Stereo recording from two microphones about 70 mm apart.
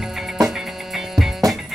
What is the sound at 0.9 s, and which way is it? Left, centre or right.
Music, centre.